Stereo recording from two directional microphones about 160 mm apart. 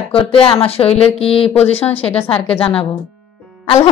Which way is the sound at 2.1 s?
35° left (ahead or behind).